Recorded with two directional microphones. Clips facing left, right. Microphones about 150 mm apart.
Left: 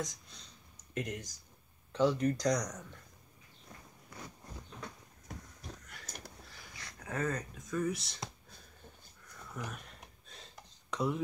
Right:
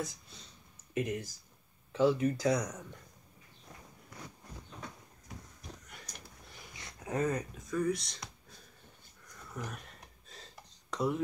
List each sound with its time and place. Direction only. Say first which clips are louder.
0.9 s speech: right 4 dB; 5° right (ahead or behind)
6.5 s a sound: right 1 dB; 20° right (ahead or behind)
7.5 s speech: right 2 dB; centre (ahead or behind)
9.6 s speech: right 1 dB; centre (ahead or behind)
10.9 s chopping: right 1 dB; centre (ahead or behind)